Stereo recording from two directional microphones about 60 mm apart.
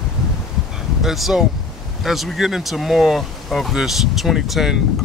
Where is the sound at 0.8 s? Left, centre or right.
Centre.